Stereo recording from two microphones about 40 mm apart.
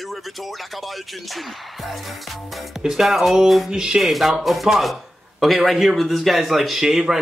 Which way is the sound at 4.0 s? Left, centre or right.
Centre.